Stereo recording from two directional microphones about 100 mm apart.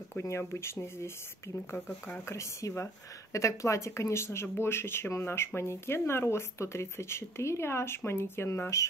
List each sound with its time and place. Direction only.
0.2 s speech: 25° left (ahead or behind)
1.9 s speech: 10° left (ahead or behind)
2.2 s speech: 30° left (ahead or behind)